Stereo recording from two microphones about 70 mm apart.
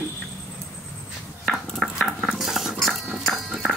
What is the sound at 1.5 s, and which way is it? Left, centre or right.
Dog, centre.